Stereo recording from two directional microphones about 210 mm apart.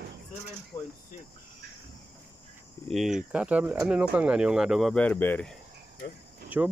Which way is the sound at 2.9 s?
Centre (ahead or behind).